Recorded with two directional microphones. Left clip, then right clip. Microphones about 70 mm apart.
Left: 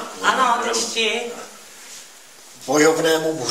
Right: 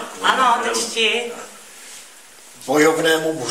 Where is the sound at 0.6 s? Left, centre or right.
Left.